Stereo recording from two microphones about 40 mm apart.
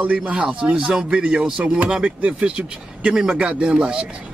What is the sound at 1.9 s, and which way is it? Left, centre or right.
Speech, centre.